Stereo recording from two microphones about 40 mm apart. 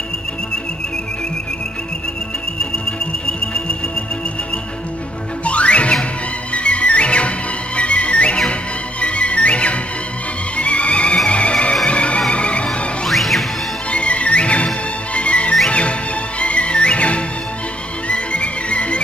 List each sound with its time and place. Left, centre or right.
3.3 s music: left
5.4 s music: left
13.1 s music: centre
13.8 s music: left